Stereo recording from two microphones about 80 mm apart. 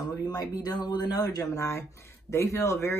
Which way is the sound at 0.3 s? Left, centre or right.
Left.